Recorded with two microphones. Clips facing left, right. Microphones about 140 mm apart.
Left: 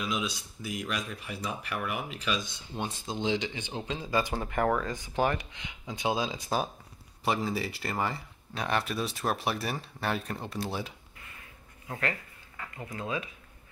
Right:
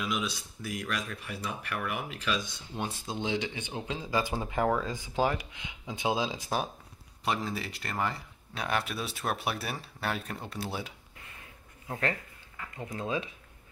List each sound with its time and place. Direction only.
0.0 s speech: centre (ahead or behind)
2.8 s speech: 10° right (ahead or behind)
11.9 s speech: 25° right (ahead or behind)